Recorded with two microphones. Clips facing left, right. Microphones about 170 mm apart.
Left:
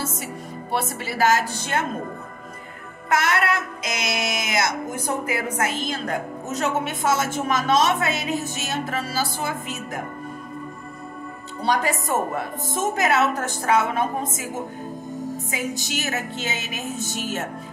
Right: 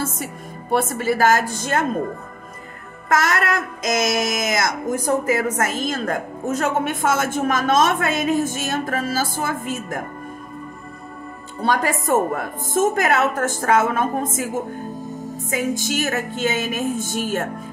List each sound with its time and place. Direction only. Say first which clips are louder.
0.0 s a woman's voice: right 3 dB; 50° right (ahead or behind)
3.1 s a woman's voice: right 2 dB; 45° right (ahead or behind)
11.6 s a woman's voice: right 2 dB; 50° right (ahead or behind)